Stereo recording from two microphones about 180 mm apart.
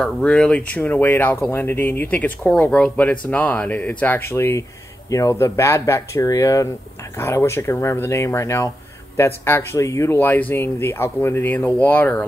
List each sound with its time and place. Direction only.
0.0 s speech: 5° left (ahead or behind)